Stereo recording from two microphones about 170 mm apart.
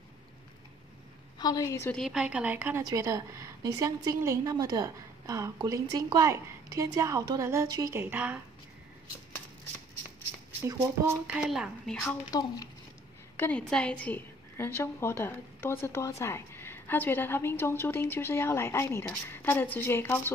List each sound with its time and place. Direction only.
1.4 s a woman's voice: 20° left (ahead or behind)
1.9 s a woman's voice: centre (ahead or behind)
10.6 s speech: 15° right (ahead or behind); by 12.2 s 5° left (ahead or behind)
12.3 s a woman's voice: 20° left (ahead or behind)
13.4 s a woman's voice: 5° left (ahead or behind)